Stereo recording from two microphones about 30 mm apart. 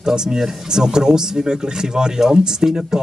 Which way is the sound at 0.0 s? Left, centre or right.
Right.